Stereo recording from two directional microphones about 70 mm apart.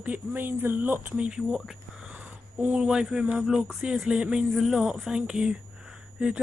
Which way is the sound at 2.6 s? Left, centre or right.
Centre.